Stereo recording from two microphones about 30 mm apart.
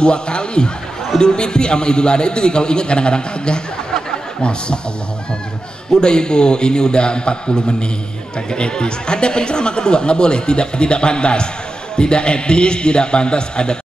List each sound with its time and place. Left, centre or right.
0.0 s a man's voice: left
5.9 s a man's voice: left